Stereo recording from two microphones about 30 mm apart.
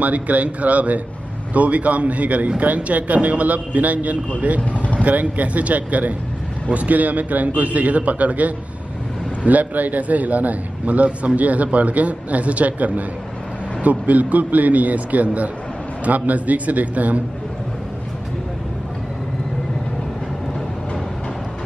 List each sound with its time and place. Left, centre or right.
0.0 s a man's voice: right